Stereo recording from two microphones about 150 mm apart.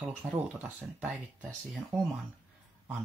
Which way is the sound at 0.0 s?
10° right (ahead or behind).